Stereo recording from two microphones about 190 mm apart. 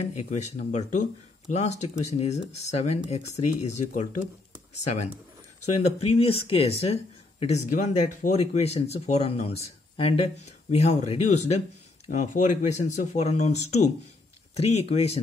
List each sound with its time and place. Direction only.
0.1 s speech: 35° left (ahead or behind)
5.8 s speech: 30° left (ahead or behind)